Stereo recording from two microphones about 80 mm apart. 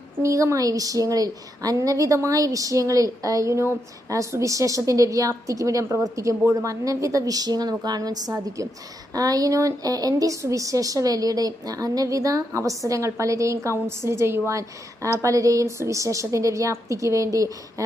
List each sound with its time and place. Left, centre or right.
0.2 s speech: right